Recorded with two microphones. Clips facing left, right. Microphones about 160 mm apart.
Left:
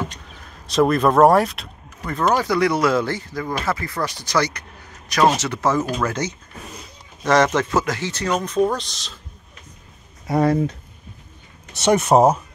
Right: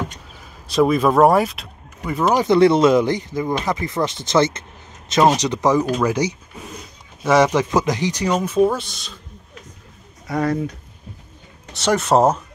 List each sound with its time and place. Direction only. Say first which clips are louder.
0.0 s vehicle: even; 5° right (ahead or behind)
2.4 s speech: right 6 dB; 25° right (ahead or behind); by 9.2 s centre (ahead or behind)
10.2 s speech: left 3 dB; 30° left (ahead or behind)
11.8 s speech: left 1 dB; 20° left (ahead or behind)